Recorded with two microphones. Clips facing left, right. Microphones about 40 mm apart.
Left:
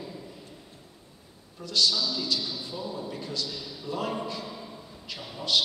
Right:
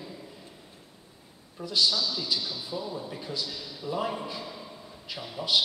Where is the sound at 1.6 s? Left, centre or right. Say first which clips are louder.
Even; centre.